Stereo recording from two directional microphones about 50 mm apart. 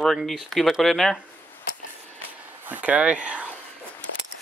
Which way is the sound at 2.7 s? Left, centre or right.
Right.